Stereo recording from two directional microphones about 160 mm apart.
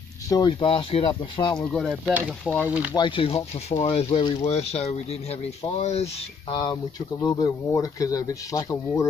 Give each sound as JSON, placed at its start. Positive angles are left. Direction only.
{"t": 0.3, "sound": "speech", "side_deg": 25}
{"t": 1.7, "sound": "speech", "side_deg": 0}
{"t": 2.9, "sound": "speech", "side_deg": 30}
{"t": 6.5, "sound": "speech", "side_deg": 25}